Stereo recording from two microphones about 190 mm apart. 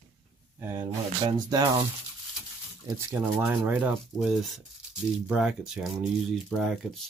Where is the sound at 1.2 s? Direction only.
25° right (ahead or behind).